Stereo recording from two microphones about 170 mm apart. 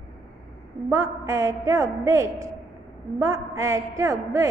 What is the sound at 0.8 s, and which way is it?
A woman's voice, 15° right (ahead or behind).